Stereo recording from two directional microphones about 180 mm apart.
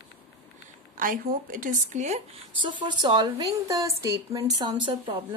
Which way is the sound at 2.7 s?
25° right (ahead or behind).